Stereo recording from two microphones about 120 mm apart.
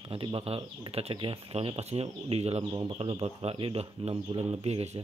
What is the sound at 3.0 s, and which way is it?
Speech, 50° right (ahead or behind).